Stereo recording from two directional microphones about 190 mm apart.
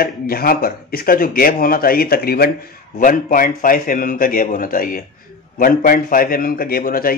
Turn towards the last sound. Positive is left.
turn(degrees=50)  # may be behind; listen again after turning